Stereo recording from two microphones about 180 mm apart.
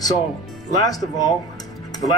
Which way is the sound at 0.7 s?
20° left (ahead or behind).